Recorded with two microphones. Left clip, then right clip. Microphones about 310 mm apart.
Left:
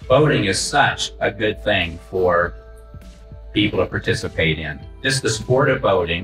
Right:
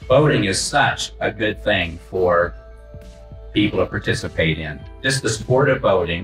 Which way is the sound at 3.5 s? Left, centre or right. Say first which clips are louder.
Even; centre.